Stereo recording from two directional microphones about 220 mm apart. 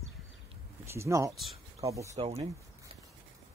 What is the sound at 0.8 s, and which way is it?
Speech, 10° right (ahead or behind).